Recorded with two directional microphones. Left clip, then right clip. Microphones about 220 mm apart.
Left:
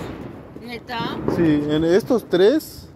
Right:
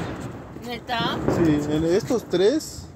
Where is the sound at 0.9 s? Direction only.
30° right (ahead or behind).